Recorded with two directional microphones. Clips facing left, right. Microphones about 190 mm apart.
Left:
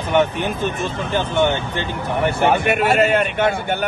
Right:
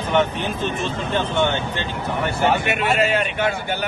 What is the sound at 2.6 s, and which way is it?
Speech, 45° left (ahead or behind).